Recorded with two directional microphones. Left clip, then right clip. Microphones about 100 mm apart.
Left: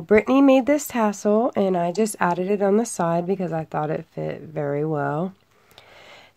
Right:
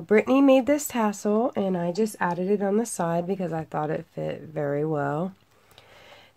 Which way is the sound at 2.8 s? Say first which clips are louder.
Left 4 dB; 35° left (ahead or behind).